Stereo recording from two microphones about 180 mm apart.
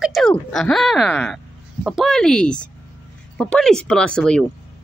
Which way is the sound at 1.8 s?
Centre (ahead or behind).